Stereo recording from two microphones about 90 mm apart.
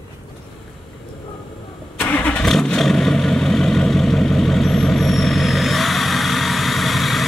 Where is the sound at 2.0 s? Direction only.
20° left (ahead or behind).